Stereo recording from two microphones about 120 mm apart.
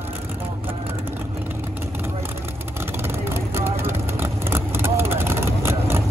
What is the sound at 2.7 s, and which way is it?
Vehicle, 20° right (ahead or behind).